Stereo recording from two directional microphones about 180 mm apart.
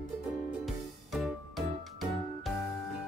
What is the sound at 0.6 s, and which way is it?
Music, centre (ahead or behind).